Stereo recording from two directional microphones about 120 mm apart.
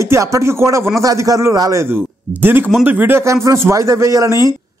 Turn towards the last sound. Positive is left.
turn(degrees=-25)  # may be behind; listen again after turning